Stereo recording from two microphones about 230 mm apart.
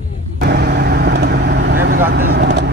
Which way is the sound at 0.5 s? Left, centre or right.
Right.